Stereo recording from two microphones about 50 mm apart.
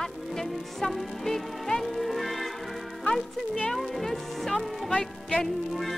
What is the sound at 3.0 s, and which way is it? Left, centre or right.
Speech, centre.